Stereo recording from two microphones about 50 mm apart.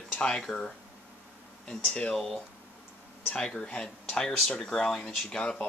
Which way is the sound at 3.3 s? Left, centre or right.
Centre.